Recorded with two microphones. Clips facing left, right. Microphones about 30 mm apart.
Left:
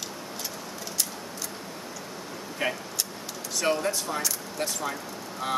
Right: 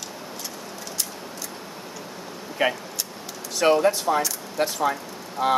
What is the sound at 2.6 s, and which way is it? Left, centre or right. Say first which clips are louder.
Speech: right 6 dB; centre.